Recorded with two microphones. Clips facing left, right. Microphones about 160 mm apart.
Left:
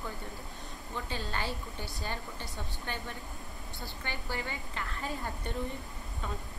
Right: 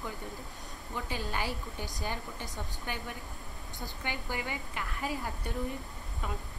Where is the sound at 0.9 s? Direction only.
10° right (ahead or behind).